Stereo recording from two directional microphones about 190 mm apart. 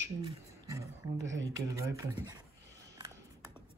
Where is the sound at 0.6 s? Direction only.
15° right (ahead or behind).